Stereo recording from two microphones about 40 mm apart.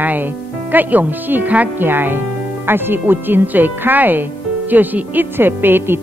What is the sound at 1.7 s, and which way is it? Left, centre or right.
Speech, right.